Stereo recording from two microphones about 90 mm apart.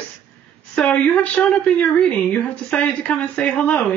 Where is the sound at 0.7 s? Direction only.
15° left (ahead or behind).